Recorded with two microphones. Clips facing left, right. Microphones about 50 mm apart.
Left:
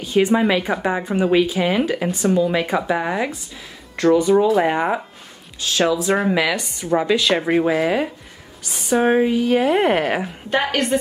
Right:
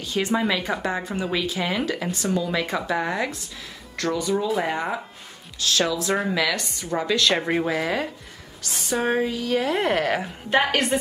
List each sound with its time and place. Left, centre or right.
0.0 s speech: centre
3.9 s speech: left
10.2 s a woman's voice: centre